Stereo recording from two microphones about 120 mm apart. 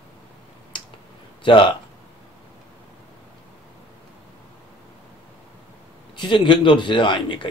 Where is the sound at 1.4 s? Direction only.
45° left (ahead or behind).